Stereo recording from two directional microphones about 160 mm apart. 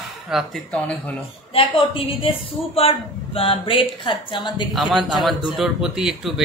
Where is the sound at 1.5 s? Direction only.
35° left (ahead or behind).